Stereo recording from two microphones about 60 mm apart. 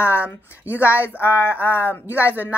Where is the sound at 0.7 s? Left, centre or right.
Right.